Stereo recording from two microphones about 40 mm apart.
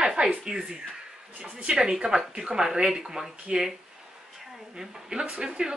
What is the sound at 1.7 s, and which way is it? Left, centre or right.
A woman's voice, centre.